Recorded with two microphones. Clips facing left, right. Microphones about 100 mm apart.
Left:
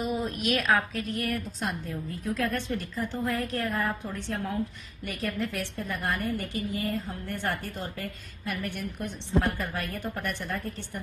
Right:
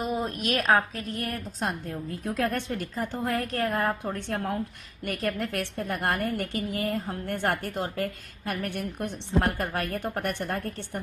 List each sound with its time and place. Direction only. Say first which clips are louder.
0.0 s a woman's voice: even; 40° right (ahead or behind)
1.2 s a woman's voice: even; 50° right (ahead or behind)